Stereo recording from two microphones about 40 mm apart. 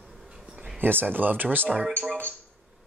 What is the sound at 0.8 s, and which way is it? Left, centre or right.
Speech, right.